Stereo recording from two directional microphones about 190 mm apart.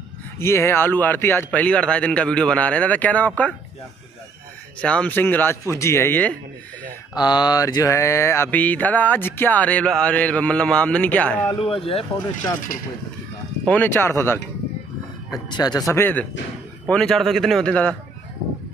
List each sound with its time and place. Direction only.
0.4 s mantra: 15° left (ahead or behind)
4.8 s mantra: 5° left (ahead or behind)
7.2 s mantra: 20° left (ahead or behind); by 11.5 s 5° left (ahead or behind)
11.6 s speech: 30° left (ahead or behind)
12.7 s speech: 50° left (ahead or behind)
13.7 s mantra: 10° left (ahead or behind)
15.3 s speech: 20° left (ahead or behind)
15.9 s mantra: 10° left (ahead or behind)
16.8 s speech: 5° left (ahead or behind)